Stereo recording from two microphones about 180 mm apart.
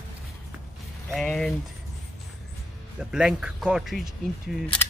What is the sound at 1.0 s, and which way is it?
Speech, centre (ahead or behind).